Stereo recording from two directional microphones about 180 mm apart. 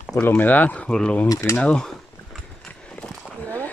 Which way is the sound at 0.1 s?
10° left (ahead or behind).